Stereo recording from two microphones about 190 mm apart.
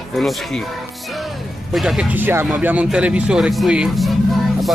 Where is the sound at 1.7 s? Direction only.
Centre (ahead or behind).